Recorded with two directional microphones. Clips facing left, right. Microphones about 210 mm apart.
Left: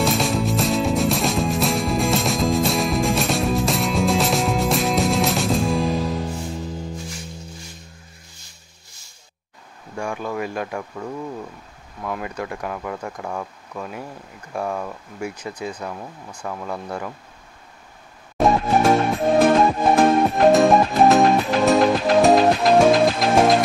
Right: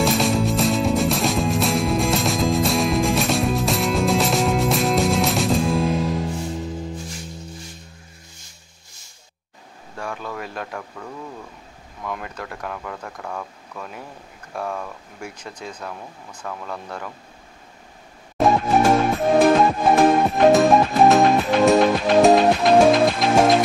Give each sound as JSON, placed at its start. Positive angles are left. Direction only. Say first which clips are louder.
{"t": 0.0, "sound": "music", "louder": "right 1 dB", "side_deg": 0}
{"t": 9.9, "sound": "a sound", "louder": "left 4 dB", "side_deg": 10}
{"t": 12.0, "sound": "speech", "louder": "left 3 dB", "side_deg": 5}
{"t": 18.4, "sound": "music", "louder": "even", "side_deg": 0}